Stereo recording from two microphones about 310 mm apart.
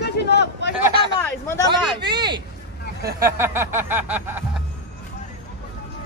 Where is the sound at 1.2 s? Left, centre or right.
Centre.